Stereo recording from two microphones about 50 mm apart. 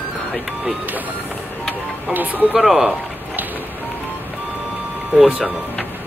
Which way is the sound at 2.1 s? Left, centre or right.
Right.